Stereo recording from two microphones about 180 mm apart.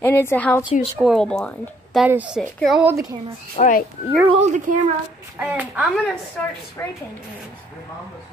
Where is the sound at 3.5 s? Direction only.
45° left (ahead or behind).